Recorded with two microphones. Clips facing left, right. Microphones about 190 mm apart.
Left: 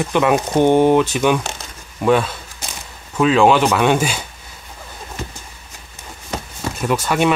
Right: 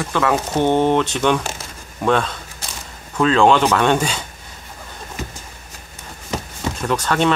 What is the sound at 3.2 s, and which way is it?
Speech, 5° left (ahead or behind).